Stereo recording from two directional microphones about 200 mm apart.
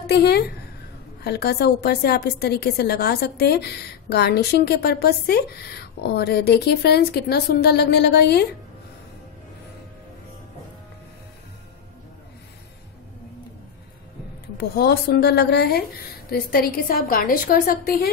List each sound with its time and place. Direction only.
0.0 s a woman's voice: 55° left (ahead or behind)
14.6 s a woman's voice: 55° left (ahead or behind)